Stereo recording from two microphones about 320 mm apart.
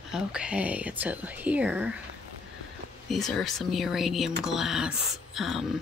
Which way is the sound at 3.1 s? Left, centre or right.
Centre.